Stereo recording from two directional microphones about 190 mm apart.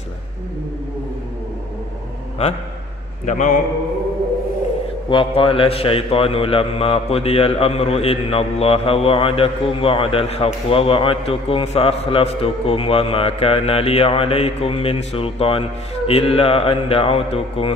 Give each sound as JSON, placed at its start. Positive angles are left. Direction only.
{"t": 3.3, "sound": "a man's voice", "side_deg": 40}
{"t": 5.1, "sound": "a man's voice", "side_deg": 30}